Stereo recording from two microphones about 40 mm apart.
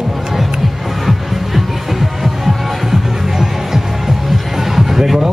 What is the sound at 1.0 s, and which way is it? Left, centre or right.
Music, centre.